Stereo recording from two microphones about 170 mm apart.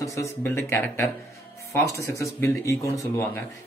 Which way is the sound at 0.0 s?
20° left (ahead or behind).